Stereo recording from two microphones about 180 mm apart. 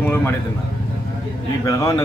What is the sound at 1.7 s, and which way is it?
Speech, 15° left (ahead or behind).